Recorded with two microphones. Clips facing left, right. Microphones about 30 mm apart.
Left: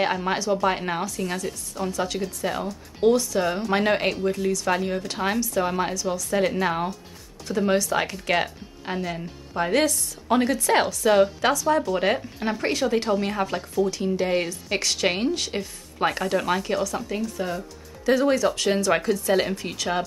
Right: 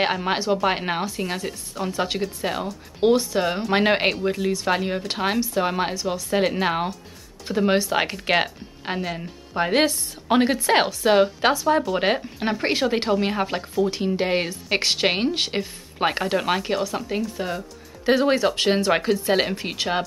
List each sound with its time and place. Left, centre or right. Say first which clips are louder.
0.0 s speech: right 1 dB; right
9.1 s speech: right 1 dB; centre
9.6 s speech: right 2 dB; right